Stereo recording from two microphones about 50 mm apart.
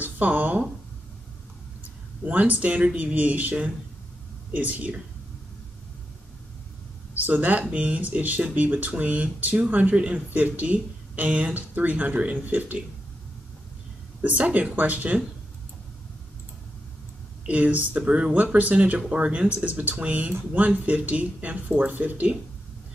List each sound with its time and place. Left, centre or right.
0.0 s speech: right
2.2 s speech: right
4.6 s speech: right
7.2 s speech: right
14.2 s speech: right
17.5 s speech: right